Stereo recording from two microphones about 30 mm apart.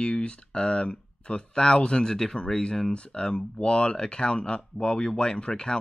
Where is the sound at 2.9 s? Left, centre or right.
Left.